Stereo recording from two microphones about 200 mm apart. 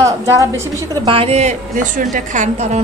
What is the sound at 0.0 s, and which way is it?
Speech, 15° right (ahead or behind).